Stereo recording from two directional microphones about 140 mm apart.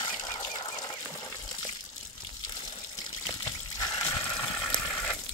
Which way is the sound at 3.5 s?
25° left (ahead or behind).